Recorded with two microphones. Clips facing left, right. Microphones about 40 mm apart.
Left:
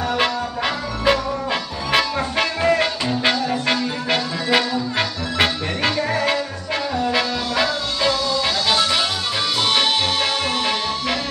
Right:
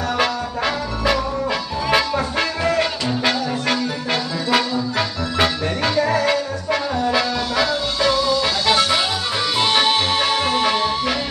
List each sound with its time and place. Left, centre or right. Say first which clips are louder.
0.2 s trombone: right 1 dB; left
2.3 s music: left 3 dB; left
7.1 s music: right 1 dB; centre
8.1 s music: right 3 dB; centre
9.6 s music: right 2 dB; centre